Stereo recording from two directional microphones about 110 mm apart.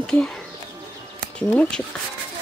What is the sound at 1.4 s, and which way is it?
Speech, 10° left (ahead or behind).